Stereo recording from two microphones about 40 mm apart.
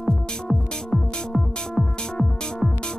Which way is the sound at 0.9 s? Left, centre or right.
Centre.